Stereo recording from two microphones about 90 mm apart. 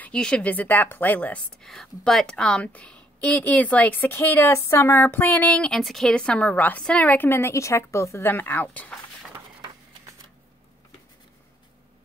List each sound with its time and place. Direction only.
0.0 s a woman's voice: 10° left (ahead or behind)
1.6 s a woman's voice: 5° left (ahead or behind)
5.8 s a woman's voice: centre (ahead or behind); by 8.9 s 20° left (ahead or behind)